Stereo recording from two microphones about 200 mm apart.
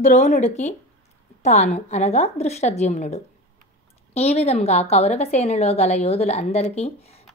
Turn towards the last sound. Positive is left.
turn(degrees=30)  # may be behind; listen again after turning